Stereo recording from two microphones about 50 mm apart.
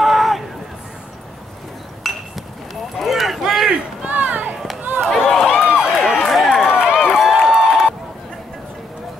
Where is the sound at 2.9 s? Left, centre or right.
Centre.